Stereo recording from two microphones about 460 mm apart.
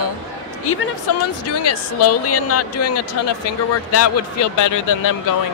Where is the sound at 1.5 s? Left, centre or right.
Left.